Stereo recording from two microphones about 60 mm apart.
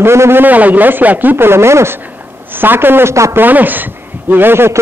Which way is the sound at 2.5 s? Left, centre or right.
Right.